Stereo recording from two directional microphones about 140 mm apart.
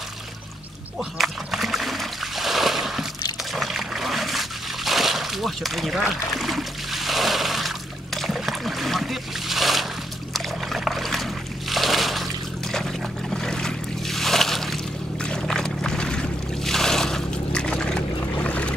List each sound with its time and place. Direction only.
0.9 s splash: centre (ahead or behind)
3.5 s trickle: centre (ahead or behind)
10.3 s boat: centre (ahead or behind)
11.7 s a sound: centre (ahead or behind)
13.3 s boat: 5° left (ahead or behind)